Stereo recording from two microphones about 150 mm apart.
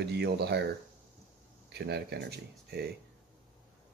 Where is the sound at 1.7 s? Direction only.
90° right.